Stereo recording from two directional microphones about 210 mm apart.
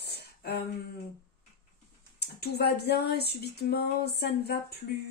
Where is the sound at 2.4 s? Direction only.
50° left (ahead or behind).